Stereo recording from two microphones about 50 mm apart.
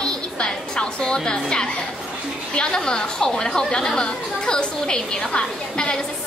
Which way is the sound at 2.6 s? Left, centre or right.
Centre.